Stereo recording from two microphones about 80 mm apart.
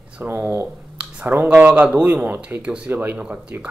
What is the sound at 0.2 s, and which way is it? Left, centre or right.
Speech, right.